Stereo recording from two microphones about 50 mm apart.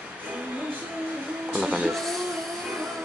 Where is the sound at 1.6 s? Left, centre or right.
Right.